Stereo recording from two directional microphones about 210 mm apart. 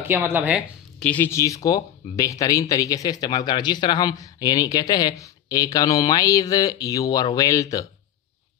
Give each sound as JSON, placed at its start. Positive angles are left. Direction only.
{"t": 0.0, "sound": "speech", "side_deg": -10}
{"t": 1.0, "sound": "speech", "side_deg": 10}